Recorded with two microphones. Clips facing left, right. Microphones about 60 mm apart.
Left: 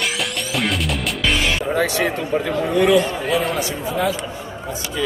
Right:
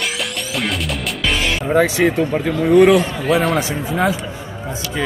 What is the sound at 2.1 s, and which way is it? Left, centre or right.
Speech, right.